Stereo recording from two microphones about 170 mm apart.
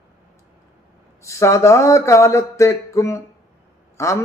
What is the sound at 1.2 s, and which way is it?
A man's voice, 15° left (ahead or behind).